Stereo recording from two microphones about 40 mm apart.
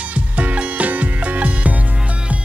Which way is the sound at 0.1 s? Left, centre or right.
Right.